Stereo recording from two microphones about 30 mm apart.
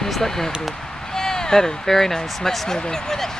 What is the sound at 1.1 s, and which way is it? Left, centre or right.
Speech, centre.